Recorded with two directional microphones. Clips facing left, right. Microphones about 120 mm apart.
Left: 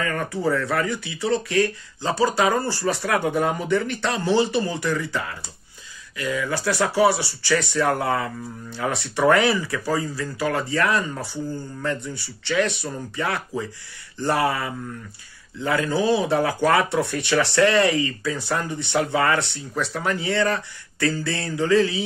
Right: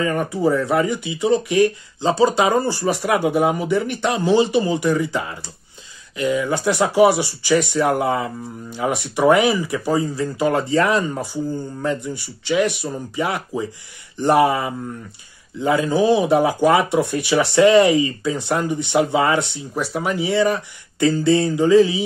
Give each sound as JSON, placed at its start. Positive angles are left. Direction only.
{"t": 0.0, "sound": "speech", "side_deg": -20}